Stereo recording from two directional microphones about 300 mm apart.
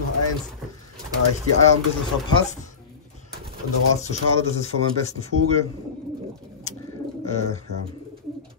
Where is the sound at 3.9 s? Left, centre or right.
Left.